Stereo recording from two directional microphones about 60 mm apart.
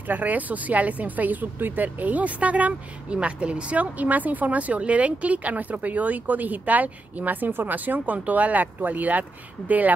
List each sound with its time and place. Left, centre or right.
0.0 s speech: right